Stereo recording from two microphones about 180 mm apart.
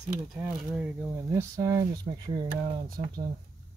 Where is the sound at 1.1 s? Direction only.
15° right (ahead or behind).